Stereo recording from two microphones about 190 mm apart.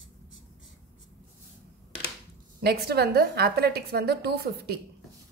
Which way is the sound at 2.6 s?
55° right (ahead or behind).